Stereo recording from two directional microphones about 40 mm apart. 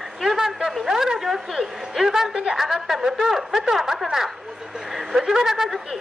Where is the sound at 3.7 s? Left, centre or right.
Centre.